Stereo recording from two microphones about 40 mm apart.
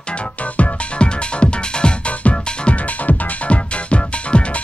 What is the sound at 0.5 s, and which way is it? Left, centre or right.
Music, left.